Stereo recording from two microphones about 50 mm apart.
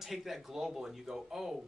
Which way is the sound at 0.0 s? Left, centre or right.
Centre.